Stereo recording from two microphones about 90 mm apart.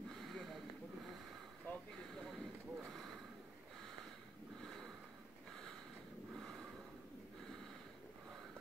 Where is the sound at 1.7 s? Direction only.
20° left (ahead or behind).